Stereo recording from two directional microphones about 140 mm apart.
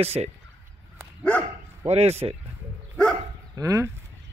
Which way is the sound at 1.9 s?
50° right (ahead or behind).